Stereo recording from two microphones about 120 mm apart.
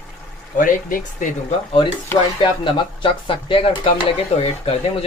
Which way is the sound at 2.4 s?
45° left (ahead or behind).